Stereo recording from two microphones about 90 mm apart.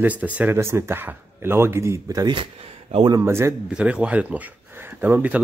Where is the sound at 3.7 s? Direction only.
10° right (ahead or behind).